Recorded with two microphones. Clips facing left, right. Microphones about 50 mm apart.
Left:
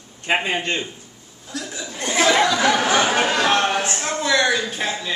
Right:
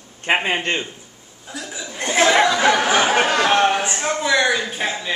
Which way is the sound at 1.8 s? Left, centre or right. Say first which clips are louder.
Right 3 dB; right.